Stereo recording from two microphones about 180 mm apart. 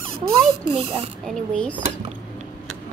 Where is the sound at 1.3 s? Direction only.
5° left (ahead or behind).